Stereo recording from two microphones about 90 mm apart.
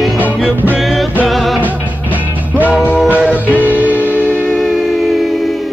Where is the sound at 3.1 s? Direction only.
15° right (ahead or behind).